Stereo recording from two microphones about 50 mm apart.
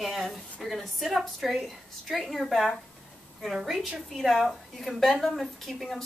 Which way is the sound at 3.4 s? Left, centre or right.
Centre.